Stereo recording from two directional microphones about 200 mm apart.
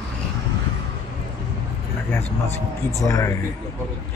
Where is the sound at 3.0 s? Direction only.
15° left (ahead or behind).